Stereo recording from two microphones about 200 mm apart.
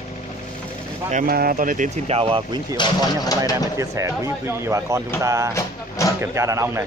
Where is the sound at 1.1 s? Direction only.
45° right (ahead or behind); by 2.8 s 25° right (ahead or behind).